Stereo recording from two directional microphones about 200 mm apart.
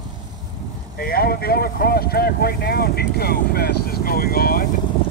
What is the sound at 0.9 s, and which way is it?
Speech, 50° left (ahead or behind).